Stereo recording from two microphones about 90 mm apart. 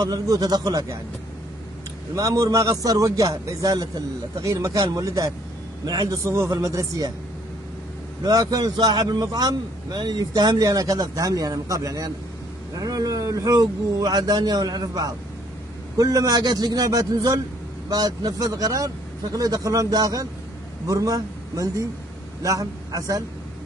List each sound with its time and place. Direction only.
0.0 s a man's voice: 45° right (ahead or behind)
2.1 s a man's voice: 40° right (ahead or behind)
8.2 s a man's voice: 45° right (ahead or behind)